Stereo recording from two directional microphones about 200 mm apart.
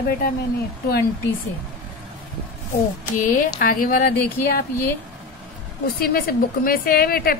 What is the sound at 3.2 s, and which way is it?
A woman's voice, 40° left (ahead or behind).